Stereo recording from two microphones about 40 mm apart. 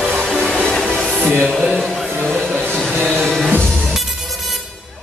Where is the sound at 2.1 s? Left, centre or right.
Centre.